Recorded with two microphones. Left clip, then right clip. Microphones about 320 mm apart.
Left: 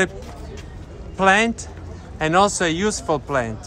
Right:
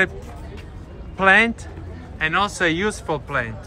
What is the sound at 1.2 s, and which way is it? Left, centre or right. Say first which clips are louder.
A man's voice: right 1 dB; centre.